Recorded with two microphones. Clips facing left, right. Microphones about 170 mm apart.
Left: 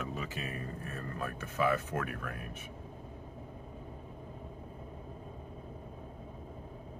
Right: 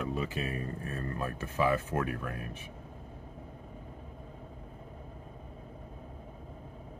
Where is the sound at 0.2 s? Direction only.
35° right (ahead or behind).